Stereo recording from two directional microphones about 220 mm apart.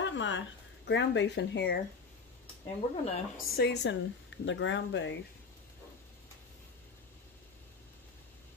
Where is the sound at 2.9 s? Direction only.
30° left (ahead or behind).